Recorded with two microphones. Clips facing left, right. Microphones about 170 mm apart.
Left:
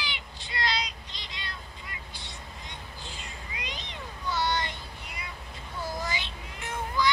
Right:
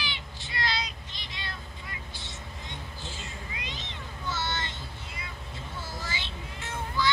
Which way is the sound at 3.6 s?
15° left (ahead or behind).